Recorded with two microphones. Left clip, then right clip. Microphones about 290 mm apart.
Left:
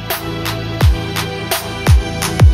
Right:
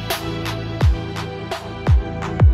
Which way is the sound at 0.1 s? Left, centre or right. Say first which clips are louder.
Left 4 dB; centre.